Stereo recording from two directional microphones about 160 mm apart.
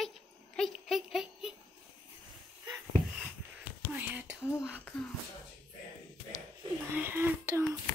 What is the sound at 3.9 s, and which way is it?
Whispering, 10° right (ahead or behind).